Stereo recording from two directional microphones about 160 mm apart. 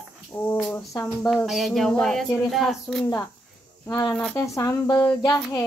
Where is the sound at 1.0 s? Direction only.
5° left (ahead or behind).